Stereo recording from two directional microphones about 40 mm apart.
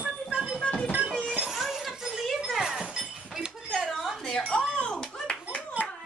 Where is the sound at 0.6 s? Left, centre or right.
Left.